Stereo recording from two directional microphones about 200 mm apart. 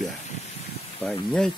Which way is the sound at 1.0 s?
Centre (ahead or behind).